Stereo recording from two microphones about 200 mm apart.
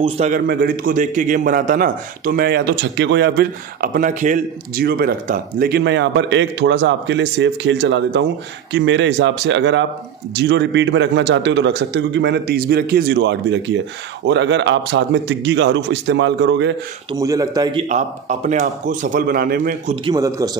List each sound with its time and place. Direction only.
0.3 s a man's voice: 45° right (ahead or behind)
17.1 s speech: 15° right (ahead or behind)
17.8 s speech: 35° right (ahead or behind)
20.2 s a man's voice: 15° right (ahead or behind)